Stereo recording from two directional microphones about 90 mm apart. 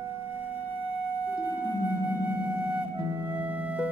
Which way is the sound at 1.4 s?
25° left (ahead or behind).